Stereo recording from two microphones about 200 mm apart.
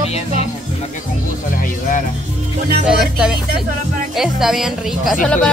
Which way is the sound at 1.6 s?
40° left (ahead or behind).